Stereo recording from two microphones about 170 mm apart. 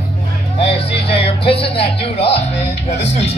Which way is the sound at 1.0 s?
35° left (ahead or behind).